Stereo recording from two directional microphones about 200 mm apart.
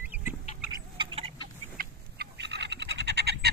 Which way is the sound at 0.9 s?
30° right (ahead or behind).